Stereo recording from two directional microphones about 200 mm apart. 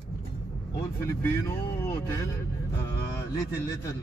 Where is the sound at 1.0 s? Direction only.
15° left (ahead or behind).